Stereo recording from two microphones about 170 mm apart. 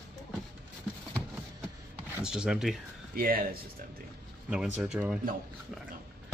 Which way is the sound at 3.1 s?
60° right (ahead or behind).